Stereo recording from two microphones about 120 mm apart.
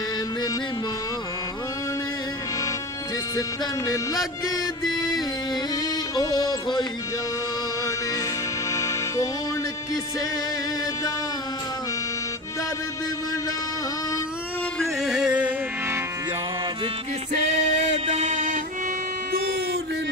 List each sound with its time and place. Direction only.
3.3 s music: 30° left (ahead or behind)
8.7 s music: 25° left (ahead or behind)
14.8 s music: centre (ahead or behind)
17.3 s music: 80° right